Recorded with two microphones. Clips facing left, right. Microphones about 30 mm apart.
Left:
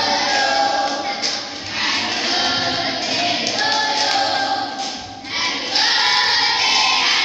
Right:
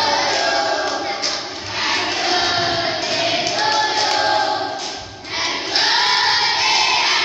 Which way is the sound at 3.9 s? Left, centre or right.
Left.